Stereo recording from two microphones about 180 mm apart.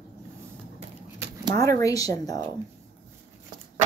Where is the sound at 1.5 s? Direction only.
15° left (ahead or behind).